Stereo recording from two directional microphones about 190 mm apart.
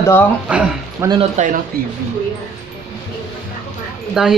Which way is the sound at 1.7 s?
50° right (ahead or behind).